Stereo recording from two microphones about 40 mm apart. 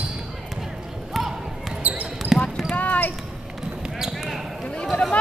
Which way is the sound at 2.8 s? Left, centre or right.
Left.